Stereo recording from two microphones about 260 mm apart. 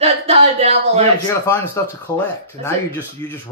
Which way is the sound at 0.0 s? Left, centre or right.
Right.